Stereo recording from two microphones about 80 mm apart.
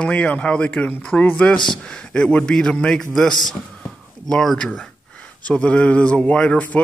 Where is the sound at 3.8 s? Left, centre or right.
Centre.